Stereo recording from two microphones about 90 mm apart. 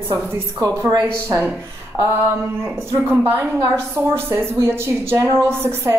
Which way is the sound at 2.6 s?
25° right (ahead or behind).